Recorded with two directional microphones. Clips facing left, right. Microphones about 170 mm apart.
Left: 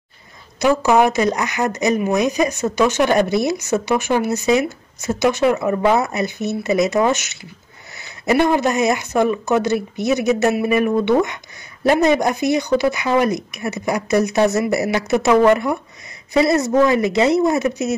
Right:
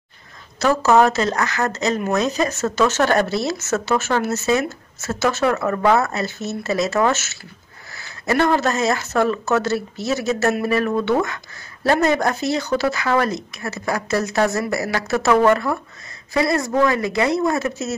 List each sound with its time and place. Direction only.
0.6 s speech: 15° left (ahead or behind)